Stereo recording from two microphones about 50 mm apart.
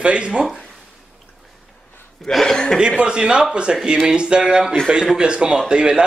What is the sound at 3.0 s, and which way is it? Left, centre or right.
Speech, centre.